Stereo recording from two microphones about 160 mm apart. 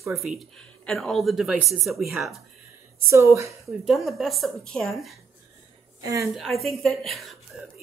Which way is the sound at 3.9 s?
Centre (ahead or behind).